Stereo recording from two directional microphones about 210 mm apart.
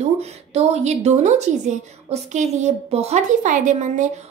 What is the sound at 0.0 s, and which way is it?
A woman's voice, 30° right (ahead or behind).